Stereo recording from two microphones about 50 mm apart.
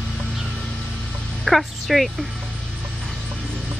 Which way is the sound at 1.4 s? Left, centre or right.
Centre.